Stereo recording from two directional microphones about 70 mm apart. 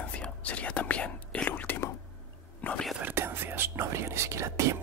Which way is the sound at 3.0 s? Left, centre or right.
Right.